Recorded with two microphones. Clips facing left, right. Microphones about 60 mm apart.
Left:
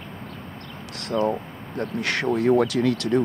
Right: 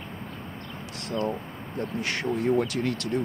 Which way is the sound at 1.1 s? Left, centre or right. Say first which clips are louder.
Left 6 dB; left.